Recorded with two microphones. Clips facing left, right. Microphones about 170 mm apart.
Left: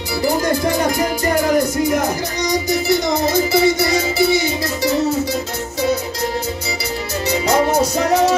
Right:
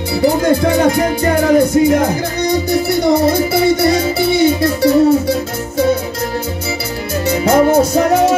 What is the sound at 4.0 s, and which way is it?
Music, 55° right (ahead or behind).